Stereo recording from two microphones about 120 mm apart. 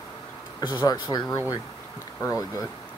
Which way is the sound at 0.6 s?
35° left (ahead or behind).